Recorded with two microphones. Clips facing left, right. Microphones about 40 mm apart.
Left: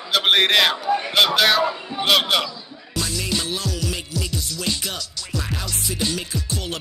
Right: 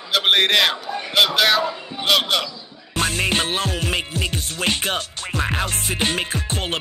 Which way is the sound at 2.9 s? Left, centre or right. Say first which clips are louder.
Right 5 dB; right.